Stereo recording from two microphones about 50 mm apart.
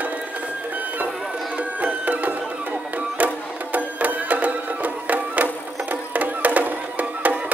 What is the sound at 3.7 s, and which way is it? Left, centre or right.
Music, right.